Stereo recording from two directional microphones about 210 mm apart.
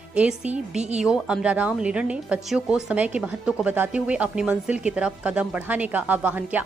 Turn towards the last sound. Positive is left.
turn(degrees=-5)  # may be behind; listen again after turning